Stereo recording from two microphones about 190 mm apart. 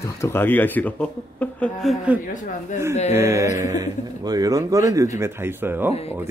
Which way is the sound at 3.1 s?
15° right (ahead or behind).